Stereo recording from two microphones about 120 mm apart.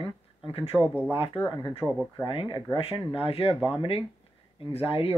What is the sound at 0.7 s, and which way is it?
Speech, 15° right (ahead or behind).